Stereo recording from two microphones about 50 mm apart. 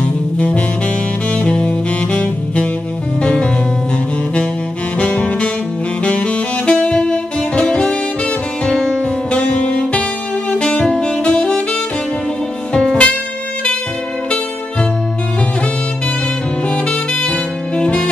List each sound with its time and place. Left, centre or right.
0.0 s saxophone: left
3.2 s music: left
4.9 s saxophone: left
8.6 s music: centre
10.8 s saxophone: left
12.7 s music: left
16.6 s saxophone: left